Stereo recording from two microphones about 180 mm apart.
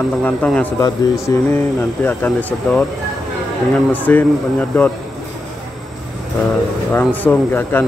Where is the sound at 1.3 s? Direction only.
20° left (ahead or behind).